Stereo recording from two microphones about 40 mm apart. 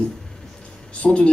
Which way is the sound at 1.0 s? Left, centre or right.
Left.